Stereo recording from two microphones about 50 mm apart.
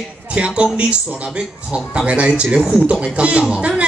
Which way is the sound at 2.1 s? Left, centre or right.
Right.